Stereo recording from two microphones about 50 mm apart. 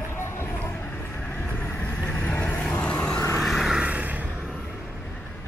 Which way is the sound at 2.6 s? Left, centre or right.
Centre.